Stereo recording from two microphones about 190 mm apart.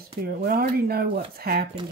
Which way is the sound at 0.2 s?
50° right (ahead or behind).